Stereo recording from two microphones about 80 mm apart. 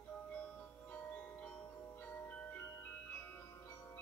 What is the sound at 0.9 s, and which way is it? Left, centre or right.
Music, centre.